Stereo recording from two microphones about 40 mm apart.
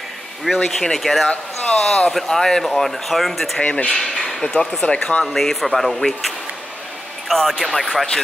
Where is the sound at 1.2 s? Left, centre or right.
Left.